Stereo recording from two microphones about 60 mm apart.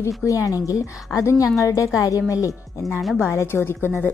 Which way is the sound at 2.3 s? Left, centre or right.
Left.